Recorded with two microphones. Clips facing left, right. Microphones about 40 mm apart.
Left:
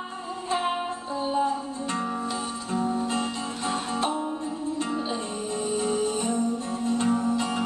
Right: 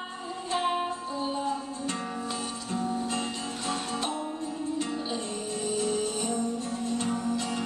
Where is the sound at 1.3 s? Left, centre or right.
Left.